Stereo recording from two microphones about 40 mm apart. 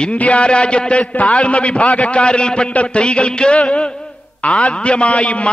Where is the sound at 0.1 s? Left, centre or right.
Left.